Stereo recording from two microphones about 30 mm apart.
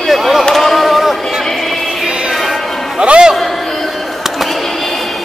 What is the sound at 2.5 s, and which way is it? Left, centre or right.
Music, centre.